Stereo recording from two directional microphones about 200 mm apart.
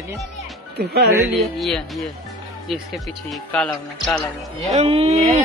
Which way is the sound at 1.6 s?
Centre (ahead or behind).